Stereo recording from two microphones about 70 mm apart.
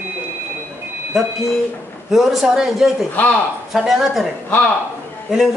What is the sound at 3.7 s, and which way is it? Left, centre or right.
Speech, centre.